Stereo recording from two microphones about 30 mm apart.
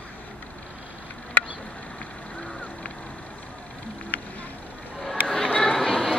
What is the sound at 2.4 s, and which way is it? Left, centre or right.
Vehicle, left.